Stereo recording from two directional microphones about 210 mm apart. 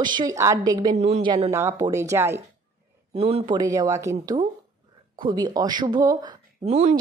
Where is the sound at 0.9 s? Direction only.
30° right (ahead or behind).